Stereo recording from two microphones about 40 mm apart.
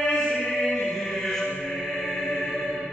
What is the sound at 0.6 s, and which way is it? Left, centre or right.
Chant, centre.